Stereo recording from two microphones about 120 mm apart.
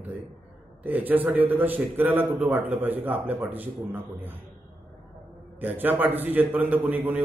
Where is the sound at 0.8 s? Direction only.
15° right (ahead or behind).